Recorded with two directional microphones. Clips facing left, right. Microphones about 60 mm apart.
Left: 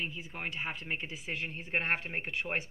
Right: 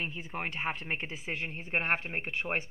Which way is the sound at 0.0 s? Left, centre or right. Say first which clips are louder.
Right 2 dB; right.